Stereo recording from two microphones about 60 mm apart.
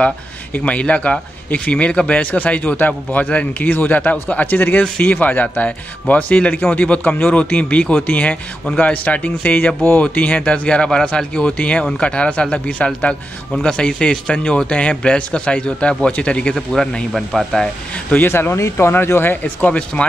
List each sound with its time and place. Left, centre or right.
0.7 s speech: left
16.5 s speech: centre
18.1 s speech: left
19.4 s speech: left